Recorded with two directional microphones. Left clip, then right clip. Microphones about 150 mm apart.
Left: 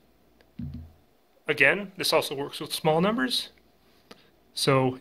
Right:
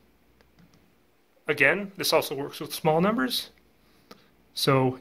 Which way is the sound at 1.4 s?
15° left (ahead or behind).